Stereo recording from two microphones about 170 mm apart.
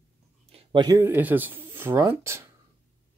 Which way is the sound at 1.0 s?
15° right (ahead or behind).